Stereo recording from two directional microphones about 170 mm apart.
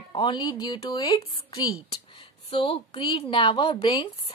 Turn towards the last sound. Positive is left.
turn(degrees=30)  # may be behind; listen again after turning